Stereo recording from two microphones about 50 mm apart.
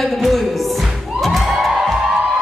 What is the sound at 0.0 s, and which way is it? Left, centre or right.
Music, centre.